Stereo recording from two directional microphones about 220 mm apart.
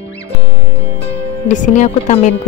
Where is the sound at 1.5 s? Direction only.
35° left (ahead or behind).